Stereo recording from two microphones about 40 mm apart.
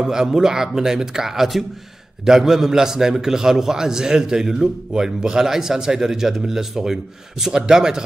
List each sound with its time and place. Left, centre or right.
0.0 s a man's voice: centre